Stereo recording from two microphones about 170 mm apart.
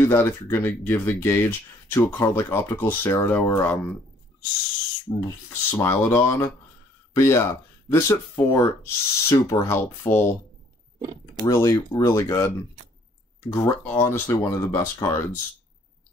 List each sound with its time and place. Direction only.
0.0 s speech: 15° left (ahead or behind)
5.1 s speech: 20° left (ahead or behind)
11.4 s speech: 20° left (ahead or behind)